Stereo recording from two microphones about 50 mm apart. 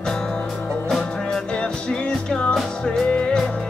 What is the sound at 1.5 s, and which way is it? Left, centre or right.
Music, centre.